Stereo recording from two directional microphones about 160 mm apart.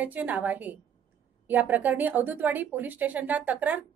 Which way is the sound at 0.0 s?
10° right (ahead or behind).